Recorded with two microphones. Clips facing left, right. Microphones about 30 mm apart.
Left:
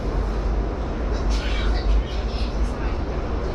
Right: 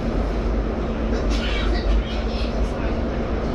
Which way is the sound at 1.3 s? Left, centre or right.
Right.